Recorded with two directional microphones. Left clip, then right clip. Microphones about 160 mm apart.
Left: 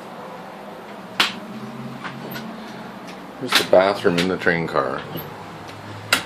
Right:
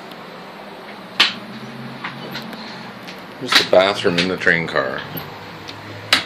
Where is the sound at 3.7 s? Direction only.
5° left (ahead or behind).